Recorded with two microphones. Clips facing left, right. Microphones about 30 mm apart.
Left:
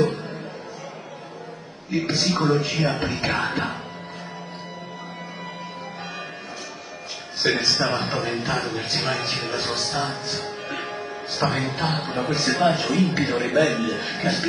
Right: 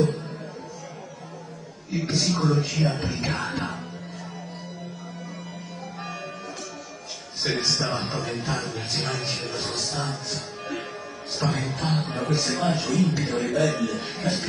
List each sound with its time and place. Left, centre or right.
0.0 s a sound: left
1.9 s a man's voice: left
7.4 s a man's voice: left